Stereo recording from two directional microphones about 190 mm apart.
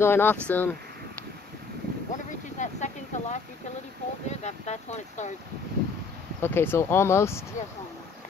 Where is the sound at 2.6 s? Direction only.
40° left (ahead or behind).